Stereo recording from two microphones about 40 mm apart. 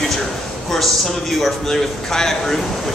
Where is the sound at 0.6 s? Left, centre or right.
Centre.